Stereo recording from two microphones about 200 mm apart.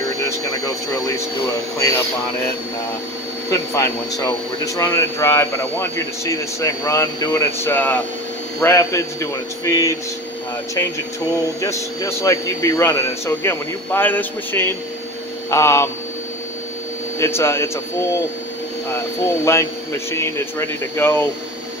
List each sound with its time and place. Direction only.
1.8 s speech: 15° left (ahead or behind)
3.4 s speech: 15° left (ahead or behind)
11.6 s speech: 15° left (ahead or behind)
17.2 s speech: 15° left (ahead or behind)
19.4 s speech: 15° left (ahead or behind)